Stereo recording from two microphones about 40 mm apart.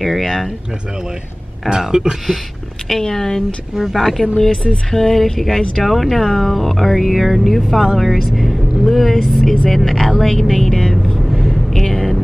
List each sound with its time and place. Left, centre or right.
0.0 s speech: centre
1.8 s speech: centre
2.9 s speech: centre
11.3 s a sound: centre